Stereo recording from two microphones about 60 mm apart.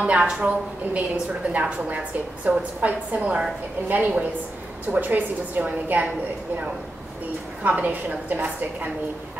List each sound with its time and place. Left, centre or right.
0.0 s a woman's voice: centre
3.9 s a woman's voice: right
7.6 s a woman's voice: right